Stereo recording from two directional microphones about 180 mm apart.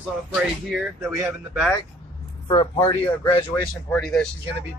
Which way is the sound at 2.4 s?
25° left (ahead or behind).